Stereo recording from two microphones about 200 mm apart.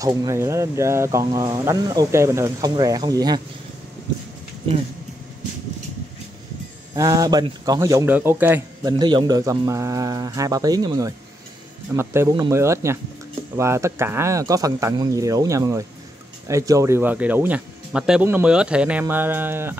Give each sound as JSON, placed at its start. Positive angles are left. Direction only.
{"t": 0.0, "sound": "speech", "side_deg": -15}
{"t": 7.0, "sound": "speech", "side_deg": -20}
{"t": 8.9, "sound": "speech", "side_deg": -20}